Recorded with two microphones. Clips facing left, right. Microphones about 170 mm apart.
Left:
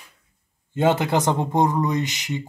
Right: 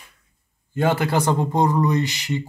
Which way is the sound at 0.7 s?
20° left (ahead or behind).